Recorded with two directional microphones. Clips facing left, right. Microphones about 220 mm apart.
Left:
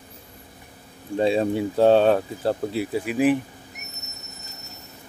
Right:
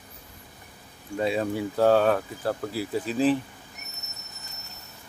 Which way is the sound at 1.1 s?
30° left (ahead or behind).